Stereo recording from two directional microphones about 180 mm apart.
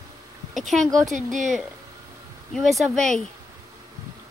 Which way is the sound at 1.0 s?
45° right (ahead or behind).